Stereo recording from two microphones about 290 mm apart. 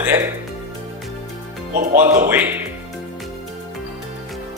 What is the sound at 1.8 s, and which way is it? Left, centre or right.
Speech, right.